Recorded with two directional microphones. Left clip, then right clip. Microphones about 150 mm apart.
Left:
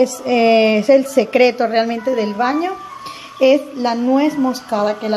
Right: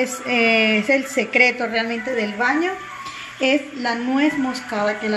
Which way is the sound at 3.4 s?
45° left (ahead or behind).